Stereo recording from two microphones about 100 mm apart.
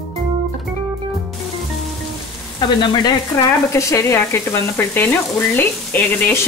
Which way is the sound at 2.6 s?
50° left (ahead or behind).